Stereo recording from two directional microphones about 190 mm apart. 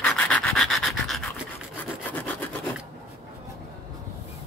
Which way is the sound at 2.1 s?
10° left (ahead or behind).